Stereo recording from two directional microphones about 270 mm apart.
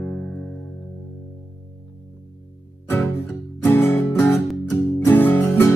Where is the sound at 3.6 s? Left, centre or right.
Centre.